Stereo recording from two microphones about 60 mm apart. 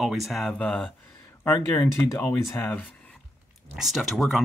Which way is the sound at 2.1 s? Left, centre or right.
Left.